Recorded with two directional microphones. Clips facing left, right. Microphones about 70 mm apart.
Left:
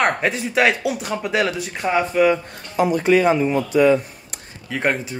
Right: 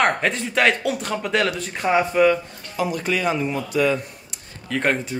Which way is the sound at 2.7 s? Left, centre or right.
Left.